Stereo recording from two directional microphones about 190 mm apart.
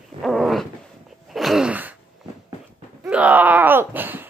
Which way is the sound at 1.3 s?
Centre (ahead or behind).